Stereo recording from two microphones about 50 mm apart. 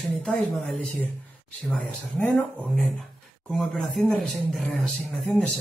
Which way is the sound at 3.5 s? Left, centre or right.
Centre.